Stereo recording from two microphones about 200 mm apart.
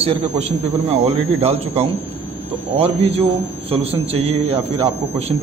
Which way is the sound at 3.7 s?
30° right (ahead or behind).